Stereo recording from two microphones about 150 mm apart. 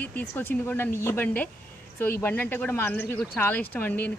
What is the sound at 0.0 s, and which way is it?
A woman's voice, 10° left (ahead or behind).